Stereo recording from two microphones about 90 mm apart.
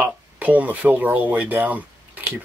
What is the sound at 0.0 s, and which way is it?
Speech, 15° right (ahead or behind).